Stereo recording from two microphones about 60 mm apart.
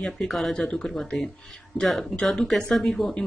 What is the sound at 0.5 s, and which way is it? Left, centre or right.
Speech, centre.